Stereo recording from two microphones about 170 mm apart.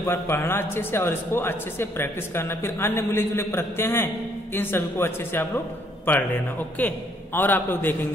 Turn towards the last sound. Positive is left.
turn(degrees=10)  # may be behind; listen again after turning